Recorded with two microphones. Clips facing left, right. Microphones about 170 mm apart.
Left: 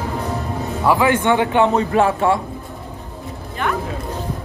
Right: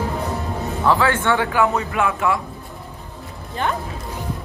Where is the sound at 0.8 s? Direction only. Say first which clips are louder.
Left 3 dB; 15° left (ahead or behind); by 2.4 s 30° left (ahead or behind).